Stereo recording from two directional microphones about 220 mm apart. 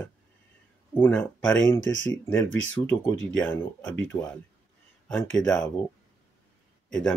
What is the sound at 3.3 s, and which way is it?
Speech, 10° left (ahead or behind).